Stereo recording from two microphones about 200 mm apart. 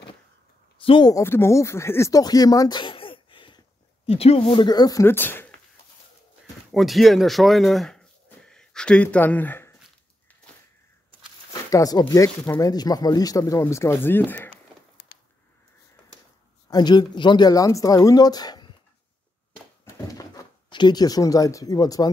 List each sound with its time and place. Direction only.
0.7 s speech: 25° left (ahead or behind)
6.7 s speech: centre (ahead or behind)
11.7 s speech: 20° left (ahead or behind)
14.5 s a sound: 50° left (ahead or behind)
16.6 s speech: 20° left (ahead or behind)
19.5 s a sound: 15° left (ahead or behind)
20.7 s speech: 20° left (ahead or behind)